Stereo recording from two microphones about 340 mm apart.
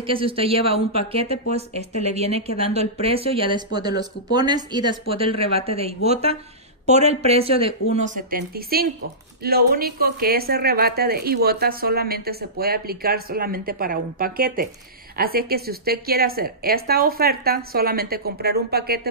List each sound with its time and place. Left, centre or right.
0.0 s a woman's voice: centre